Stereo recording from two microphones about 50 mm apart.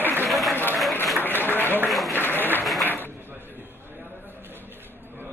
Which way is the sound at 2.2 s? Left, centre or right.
Left.